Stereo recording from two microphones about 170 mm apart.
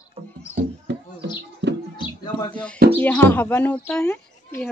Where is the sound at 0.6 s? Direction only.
55° right (ahead or behind).